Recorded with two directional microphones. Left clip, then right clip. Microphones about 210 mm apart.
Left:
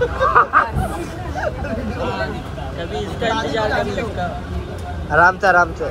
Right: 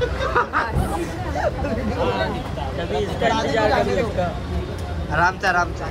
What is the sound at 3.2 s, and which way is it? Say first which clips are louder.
Speech: even; 45° right (ahead or behind).